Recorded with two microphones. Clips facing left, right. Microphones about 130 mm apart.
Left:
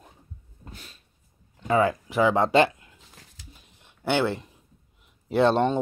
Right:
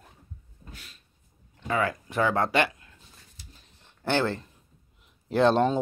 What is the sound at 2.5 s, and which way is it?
Speech, 25° left (ahead or behind).